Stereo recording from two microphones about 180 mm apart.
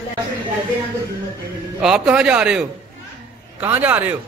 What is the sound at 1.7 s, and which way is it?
Speech, 5° right (ahead or behind).